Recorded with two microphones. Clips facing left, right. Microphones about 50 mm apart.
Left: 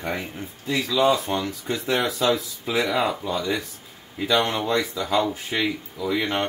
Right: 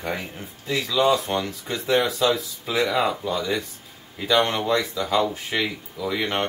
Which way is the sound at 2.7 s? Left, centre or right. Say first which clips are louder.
Even; centre.